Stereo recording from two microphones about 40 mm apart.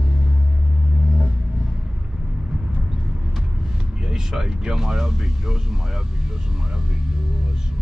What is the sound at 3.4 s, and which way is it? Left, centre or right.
Speech, centre.